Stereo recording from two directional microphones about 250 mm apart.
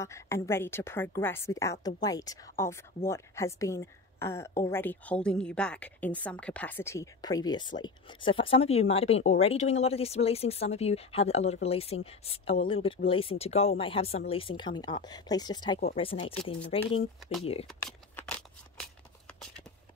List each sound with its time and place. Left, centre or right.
0.0 s a woman's voice: centre
17.6 s scissors: centre